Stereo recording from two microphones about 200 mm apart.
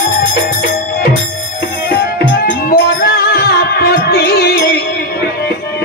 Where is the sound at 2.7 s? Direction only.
50° left (ahead or behind).